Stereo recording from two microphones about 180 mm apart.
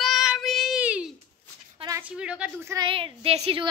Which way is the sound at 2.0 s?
5° right (ahead or behind).